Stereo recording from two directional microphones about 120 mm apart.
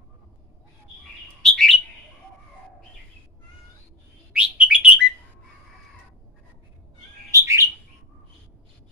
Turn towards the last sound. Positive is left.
turn(degrees=-25)  # may be behind; listen again after turning